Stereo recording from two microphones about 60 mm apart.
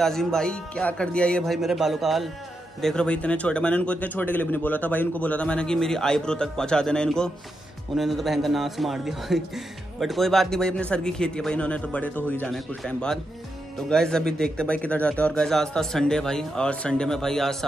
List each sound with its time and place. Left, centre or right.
0.0 s a man's voice: centre
1.4 s a man's voice: centre
2.8 s speech: centre
7.9 s a man's voice: centre
10.7 s a man's voice: centre
12.4 s a man's voice: centre
15.3 s a man's voice: centre